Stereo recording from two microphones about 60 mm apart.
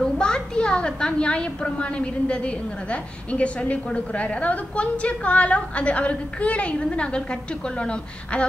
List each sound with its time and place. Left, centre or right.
0.0 s a woman's voice: centre